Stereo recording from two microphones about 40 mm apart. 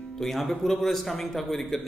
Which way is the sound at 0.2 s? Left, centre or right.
Centre.